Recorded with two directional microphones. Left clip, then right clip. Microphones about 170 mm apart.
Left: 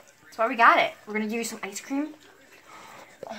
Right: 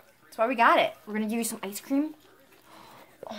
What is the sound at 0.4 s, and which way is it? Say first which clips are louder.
Speech: left 2 dB; 45° right (ahead or behind).